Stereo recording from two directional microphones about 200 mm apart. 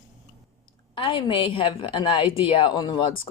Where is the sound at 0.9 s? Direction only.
25° left (ahead or behind).